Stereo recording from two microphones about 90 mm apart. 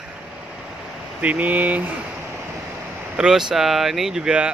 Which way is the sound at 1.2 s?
15° right (ahead or behind).